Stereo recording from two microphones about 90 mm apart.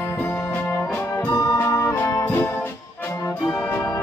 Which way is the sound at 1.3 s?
30° left (ahead or behind).